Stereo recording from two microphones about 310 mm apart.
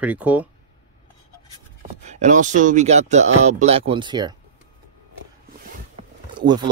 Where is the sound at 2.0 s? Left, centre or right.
Right.